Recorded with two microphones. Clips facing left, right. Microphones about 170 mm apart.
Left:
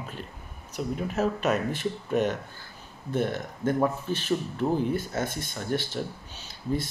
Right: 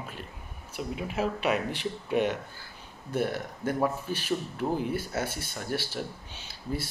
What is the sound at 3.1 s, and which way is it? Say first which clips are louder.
Speech: left 1 dB; 10° right (ahead or behind).